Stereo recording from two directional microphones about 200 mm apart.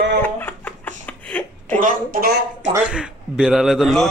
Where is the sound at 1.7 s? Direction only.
45° right (ahead or behind).